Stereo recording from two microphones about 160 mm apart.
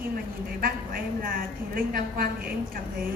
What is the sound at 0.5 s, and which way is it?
A woman's voice, 65° right (ahead or behind).